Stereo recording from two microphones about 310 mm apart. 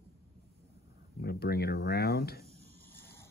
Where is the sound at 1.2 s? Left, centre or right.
Left.